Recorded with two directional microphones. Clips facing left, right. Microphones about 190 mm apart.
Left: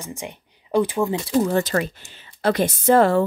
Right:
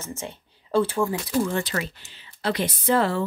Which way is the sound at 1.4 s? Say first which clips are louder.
Left 6 dB; 40° left (ahead or behind).